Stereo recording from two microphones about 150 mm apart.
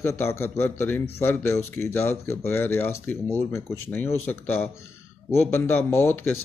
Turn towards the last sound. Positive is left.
turn(degrees=15)  # may be behind; listen again after turning